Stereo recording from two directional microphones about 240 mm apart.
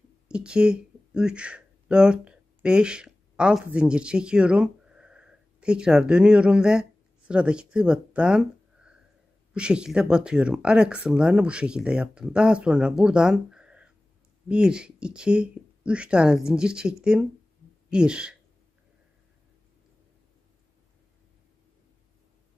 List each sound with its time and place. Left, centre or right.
0.3 s speech: centre